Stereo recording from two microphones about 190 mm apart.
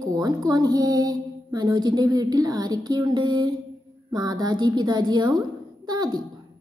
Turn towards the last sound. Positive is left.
turn(degrees=-20)  # may be behind; listen again after turning